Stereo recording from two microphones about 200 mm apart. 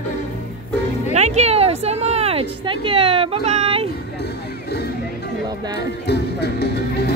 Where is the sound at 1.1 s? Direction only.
35° right (ahead or behind).